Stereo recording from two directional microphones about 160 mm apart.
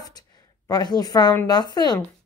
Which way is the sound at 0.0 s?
25° left (ahead or behind).